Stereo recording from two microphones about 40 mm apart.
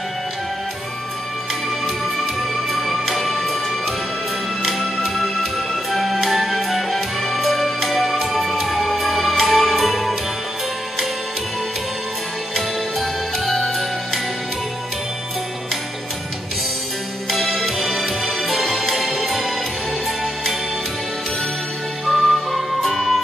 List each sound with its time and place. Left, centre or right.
1.9 s music: centre
12.5 s music: centre
17.3 s music: centre
22.0 s music: centre